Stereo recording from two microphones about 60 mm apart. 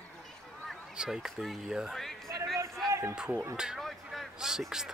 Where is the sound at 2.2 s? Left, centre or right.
Right.